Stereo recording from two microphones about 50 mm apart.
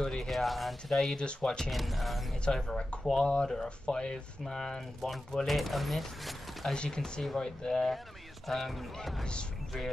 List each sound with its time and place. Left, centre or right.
0.0 s speech: centre
1.1 s speech: centre
1.6 s speech: centre
2.4 s speech: centre
6.7 s speech: centre
9.2 s speech: centre